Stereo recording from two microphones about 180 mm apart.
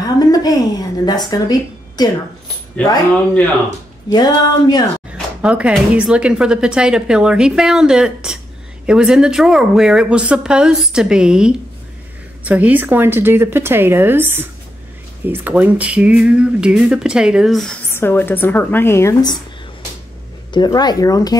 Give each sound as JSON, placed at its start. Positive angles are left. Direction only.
{"t": 0.0, "sound": "speech", "side_deg": 20}
{"t": 2.8, "sound": "speech", "side_deg": 10}
{"t": 4.1, "sound": "speech", "side_deg": 20}
{"t": 5.4, "sound": "speech", "side_deg": -5}
{"t": 17.9, "sound": "speech", "side_deg": 10}
{"t": 20.5, "sound": "speech", "side_deg": 25}